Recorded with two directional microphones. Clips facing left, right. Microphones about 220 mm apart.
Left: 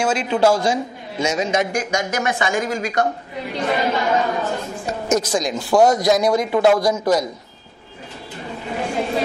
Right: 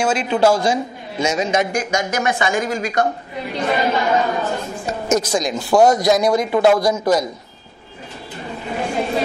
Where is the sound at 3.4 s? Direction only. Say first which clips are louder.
Right 1 dB; 15° right (ahead or behind).